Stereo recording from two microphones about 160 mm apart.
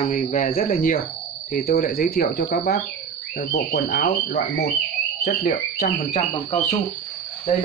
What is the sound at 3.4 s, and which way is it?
Frog, 70° left (ahead or behind).